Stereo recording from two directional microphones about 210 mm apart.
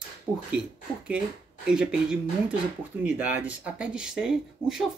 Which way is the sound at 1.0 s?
5° right (ahead or behind).